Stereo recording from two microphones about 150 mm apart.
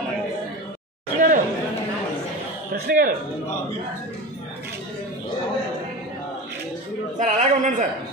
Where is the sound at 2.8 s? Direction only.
75° right (ahead or behind).